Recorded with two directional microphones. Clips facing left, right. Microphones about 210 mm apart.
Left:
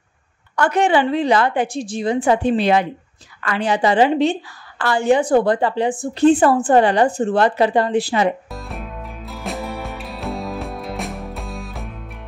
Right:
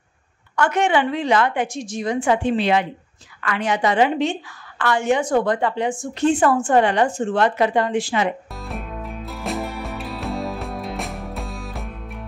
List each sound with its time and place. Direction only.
0.6 s a woman's voice: 35° left (ahead or behind)
8.5 s music: centre (ahead or behind)